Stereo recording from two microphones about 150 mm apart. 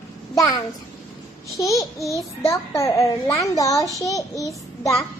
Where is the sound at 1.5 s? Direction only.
20° left (ahead or behind).